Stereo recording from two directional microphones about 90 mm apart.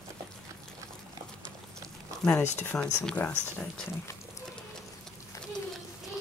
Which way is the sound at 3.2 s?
25° left (ahead or behind).